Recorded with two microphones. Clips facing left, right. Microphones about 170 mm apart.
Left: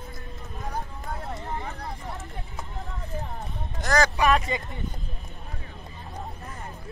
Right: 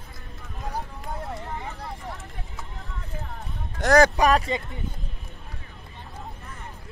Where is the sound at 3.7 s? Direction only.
60° right (ahead or behind).